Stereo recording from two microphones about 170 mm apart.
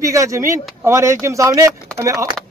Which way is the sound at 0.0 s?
20° right (ahead or behind).